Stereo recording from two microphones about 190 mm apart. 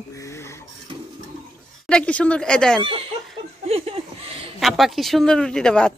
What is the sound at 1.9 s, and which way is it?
Speech, 5° left (ahead or behind).